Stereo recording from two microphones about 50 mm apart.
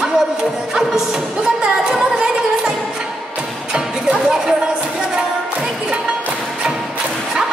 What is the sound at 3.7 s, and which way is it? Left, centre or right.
Music, centre.